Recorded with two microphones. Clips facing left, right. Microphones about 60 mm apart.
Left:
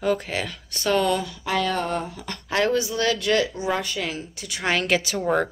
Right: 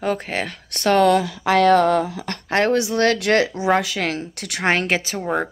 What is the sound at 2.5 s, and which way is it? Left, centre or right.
Speech, right.